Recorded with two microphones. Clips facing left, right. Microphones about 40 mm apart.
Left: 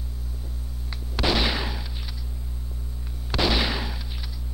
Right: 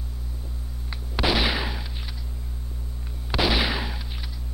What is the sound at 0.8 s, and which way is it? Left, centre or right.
Artillery fire, centre.